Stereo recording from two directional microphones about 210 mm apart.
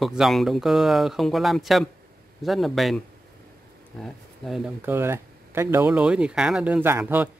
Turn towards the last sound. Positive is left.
turn(degrees=-10)  # may be behind; listen again after turning